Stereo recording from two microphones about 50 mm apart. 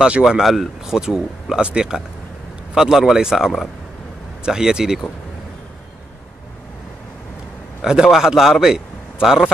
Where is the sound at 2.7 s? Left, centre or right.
Centre.